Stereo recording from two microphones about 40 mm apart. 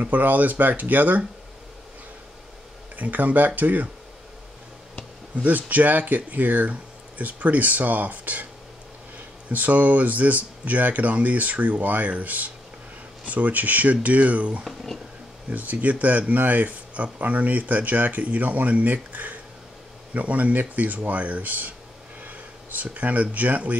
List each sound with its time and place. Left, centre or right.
0.0 s speech: right
3.0 s speech: right
5.3 s speech: right
9.5 s speech: right
14.6 s speech: centre
15.5 s speech: right